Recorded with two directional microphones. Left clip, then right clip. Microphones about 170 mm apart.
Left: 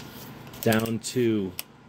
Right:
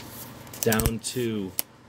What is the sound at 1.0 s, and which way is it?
Speech, 25° left (ahead or behind).